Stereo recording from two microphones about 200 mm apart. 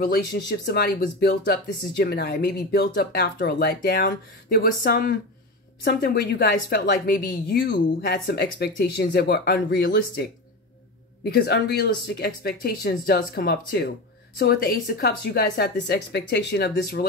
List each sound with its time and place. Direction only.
0.0 s speech: 50° left (ahead or behind)
11.2 s speech: 50° left (ahead or behind)